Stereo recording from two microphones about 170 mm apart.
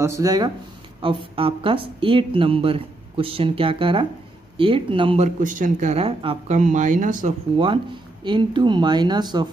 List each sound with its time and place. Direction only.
0.0 s speech: 20° right (ahead or behind); by 7.3 s 50° right (ahead or behind)
7.5 s speech: 30° right (ahead or behind)